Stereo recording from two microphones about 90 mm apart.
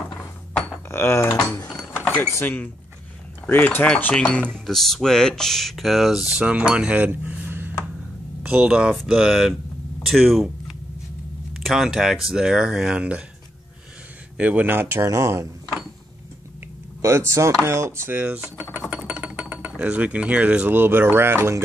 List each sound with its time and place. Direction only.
0.1 s dishes: 25° left (ahead or behind)
2.4 s mechanisms: 25° left (ahead or behind)
3.8 s speech: 10° left (ahead or behind)
6.3 s speech: 15° right (ahead or behind)
7.1 s a sound: 20° right (ahead or behind)
8.4 s speech: 10° right (ahead or behind)
10.0 s a sound: centre (ahead or behind)
11.5 s speech: 5° right (ahead or behind)
14.3 s speech: 15° right (ahead or behind); by 15.4 s 35° right (ahead or behind)
17.3 s chopping: 30° right (ahead or behind)
17.6 s speech: 30° right (ahead or behind)